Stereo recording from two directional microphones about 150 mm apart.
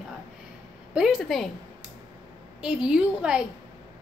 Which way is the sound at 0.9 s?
5° right (ahead or behind).